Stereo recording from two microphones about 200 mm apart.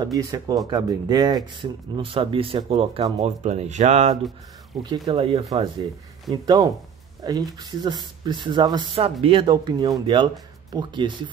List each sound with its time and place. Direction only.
0.0 s speech: 20° right (ahead or behind)
4.8 s speech: 20° right (ahead or behind)